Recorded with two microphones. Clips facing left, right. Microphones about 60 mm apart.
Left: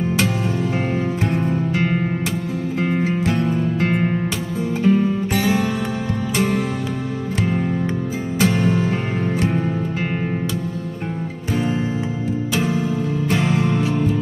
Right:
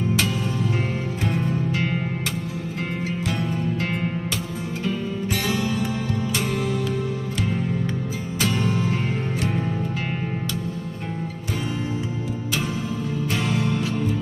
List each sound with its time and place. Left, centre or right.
2.9 s music: left
8.4 s music: left
13.3 s music: left